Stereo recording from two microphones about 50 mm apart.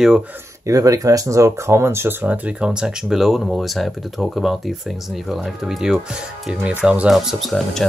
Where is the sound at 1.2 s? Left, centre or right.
Right.